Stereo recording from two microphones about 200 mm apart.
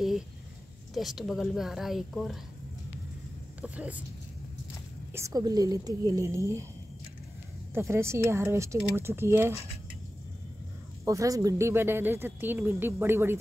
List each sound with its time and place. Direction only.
0.9 s a woman's voice: centre (ahead or behind)
3.6 s speech: 5° right (ahead or behind)
5.1 s speech: 15° right (ahead or behind)
7.7 s speech: 15° right (ahead or behind)
11.1 s speech: 15° right (ahead or behind)